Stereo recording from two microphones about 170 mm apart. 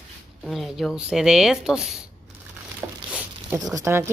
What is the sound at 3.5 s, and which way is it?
Speech, 20° right (ahead or behind).